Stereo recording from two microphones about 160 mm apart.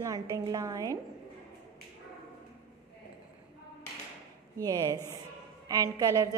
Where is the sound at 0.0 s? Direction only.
20° right (ahead or behind).